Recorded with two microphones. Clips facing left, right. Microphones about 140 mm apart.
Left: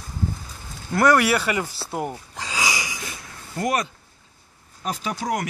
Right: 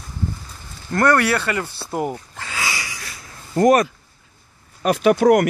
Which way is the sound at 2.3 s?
15° left (ahead or behind).